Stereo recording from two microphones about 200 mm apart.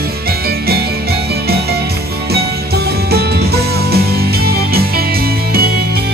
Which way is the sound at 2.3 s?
50° right (ahead or behind).